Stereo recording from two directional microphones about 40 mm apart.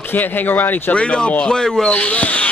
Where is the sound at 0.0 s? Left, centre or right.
Left.